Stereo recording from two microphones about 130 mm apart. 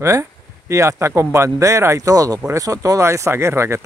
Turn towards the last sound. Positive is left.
turn(degrees=-20)  # may be behind; listen again after turning